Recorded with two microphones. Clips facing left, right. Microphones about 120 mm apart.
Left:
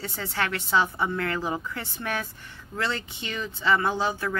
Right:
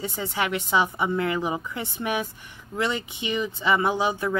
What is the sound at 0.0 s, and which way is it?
Speech, 15° right (ahead or behind).